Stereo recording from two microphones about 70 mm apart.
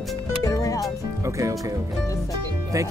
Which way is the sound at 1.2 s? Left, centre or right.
Right.